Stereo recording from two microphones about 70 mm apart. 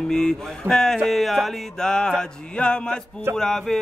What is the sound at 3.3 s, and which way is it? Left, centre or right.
Mantra, centre.